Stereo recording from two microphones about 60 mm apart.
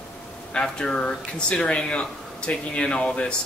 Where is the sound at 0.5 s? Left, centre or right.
Centre.